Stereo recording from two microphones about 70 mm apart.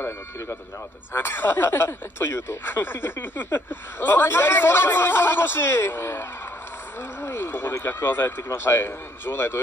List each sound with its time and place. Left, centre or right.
1.1 s speech: left